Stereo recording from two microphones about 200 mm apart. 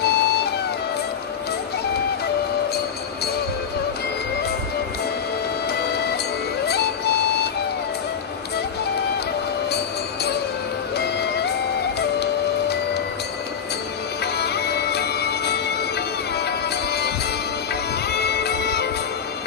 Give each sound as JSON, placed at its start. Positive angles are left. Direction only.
{"t": 0.0, "sound": "music", "side_deg": 55}
{"t": 5.7, "sound": "printer", "side_deg": 55}
{"t": 6.6, "sound": "music", "side_deg": 55}
{"t": 11.0, "sound": "music", "side_deg": 55}
{"t": 12.2, "sound": "printer", "side_deg": 55}
{"t": 14.2, "sound": "music", "side_deg": 55}
{"t": 18.1, "sound": "music", "side_deg": 55}